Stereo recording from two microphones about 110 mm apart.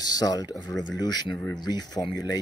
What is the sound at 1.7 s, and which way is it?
Speech, 35° left (ahead or behind).